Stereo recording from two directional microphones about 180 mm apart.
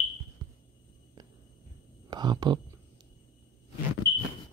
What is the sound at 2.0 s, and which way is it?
Speech, 25° right (ahead or behind).